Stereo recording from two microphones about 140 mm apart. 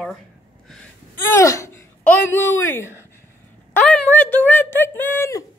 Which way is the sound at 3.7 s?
10° left (ahead or behind).